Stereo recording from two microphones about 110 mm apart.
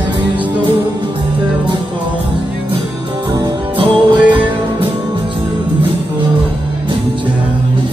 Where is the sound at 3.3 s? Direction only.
40° right (ahead or behind).